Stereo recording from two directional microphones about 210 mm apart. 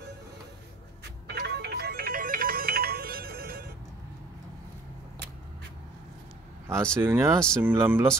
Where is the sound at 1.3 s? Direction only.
50° right (ahead or behind).